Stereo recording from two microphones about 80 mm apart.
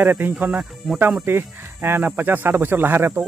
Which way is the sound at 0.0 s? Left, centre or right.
Right.